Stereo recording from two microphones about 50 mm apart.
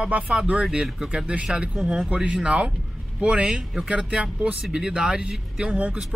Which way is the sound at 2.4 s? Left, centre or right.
Right.